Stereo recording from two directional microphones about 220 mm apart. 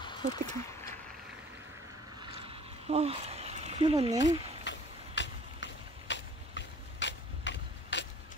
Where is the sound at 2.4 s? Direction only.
25° right (ahead or behind).